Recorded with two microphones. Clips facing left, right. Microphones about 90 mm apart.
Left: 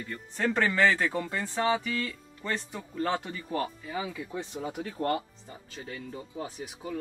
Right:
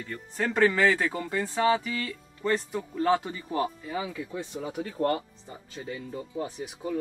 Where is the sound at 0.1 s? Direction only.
5° right (ahead or behind).